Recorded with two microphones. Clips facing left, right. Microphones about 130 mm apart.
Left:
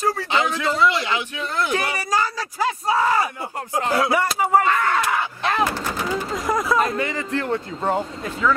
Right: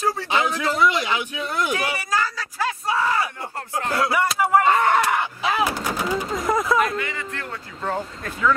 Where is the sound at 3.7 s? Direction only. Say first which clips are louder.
Left 3 dB; 15° left (ahead or behind).